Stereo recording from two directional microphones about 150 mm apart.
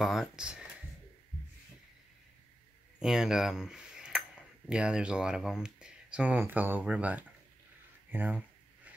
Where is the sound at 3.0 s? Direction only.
5° right (ahead or behind).